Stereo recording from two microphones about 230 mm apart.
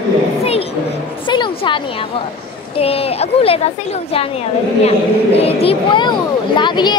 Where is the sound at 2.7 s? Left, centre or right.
Left.